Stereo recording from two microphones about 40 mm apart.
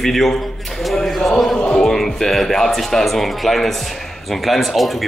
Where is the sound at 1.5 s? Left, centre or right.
Left.